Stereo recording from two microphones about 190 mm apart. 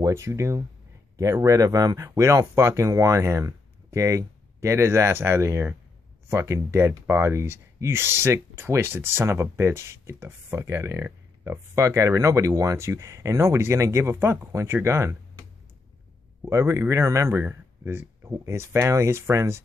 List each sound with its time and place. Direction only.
0.0 s speech: 15° right (ahead or behind)
16.4 s speech: 15° right (ahead or behind)